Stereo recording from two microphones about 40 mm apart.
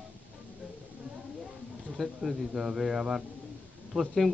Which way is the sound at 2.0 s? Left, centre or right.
Centre.